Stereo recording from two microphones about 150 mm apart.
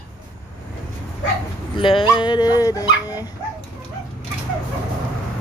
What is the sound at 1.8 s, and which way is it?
Dog, 35° left (ahead or behind).